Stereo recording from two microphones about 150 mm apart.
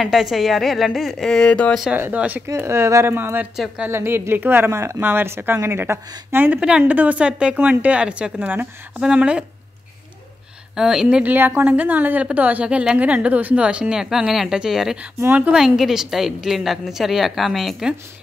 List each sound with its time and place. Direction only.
0.0 s a woman's voice: centre (ahead or behind)
2.0 s a woman's voice: 10° right (ahead or behind)
3.5 s a woman's voice: 5° right (ahead or behind)
3.9 s a woman's voice: 15° right (ahead or behind)
10.8 s a woman's voice: 5° right (ahead or behind)